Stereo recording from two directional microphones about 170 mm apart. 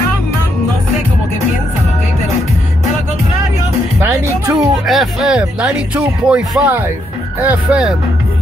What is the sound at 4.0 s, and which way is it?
Speech, 20° right (ahead or behind).